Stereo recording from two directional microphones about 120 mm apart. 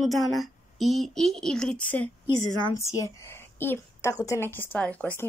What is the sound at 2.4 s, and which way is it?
A woman's voice, 30° left (ahead or behind).